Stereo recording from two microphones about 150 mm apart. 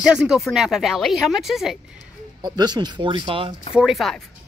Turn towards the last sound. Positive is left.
turn(degrees=0)  # may be behind; listen again after turning